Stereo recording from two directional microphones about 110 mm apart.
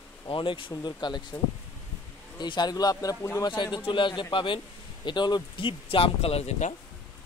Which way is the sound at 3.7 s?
45° left (ahead or behind).